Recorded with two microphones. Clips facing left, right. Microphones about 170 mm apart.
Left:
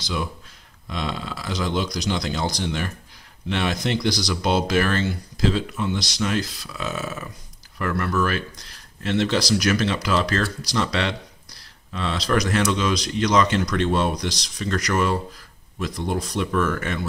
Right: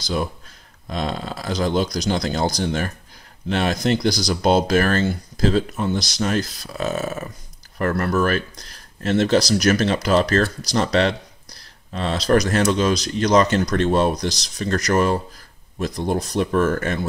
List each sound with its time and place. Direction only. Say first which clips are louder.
0.0 s speech: right 4 dB; 40° right (ahead or behind)